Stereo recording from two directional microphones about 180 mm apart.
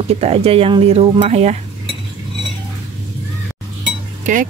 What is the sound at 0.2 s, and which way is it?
Speech, 35° right (ahead or behind).